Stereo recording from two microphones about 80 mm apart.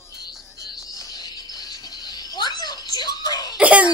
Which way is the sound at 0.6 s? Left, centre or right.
Left.